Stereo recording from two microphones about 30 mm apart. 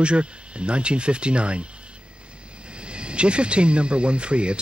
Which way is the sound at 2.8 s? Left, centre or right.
Right.